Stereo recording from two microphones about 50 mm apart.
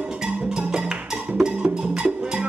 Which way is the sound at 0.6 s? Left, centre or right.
Centre.